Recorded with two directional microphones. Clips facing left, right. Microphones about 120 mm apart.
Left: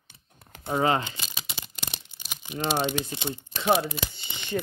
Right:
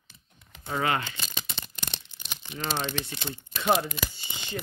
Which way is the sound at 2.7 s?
10° left (ahead or behind).